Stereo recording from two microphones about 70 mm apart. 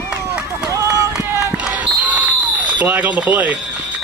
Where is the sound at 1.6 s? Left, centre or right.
Centre.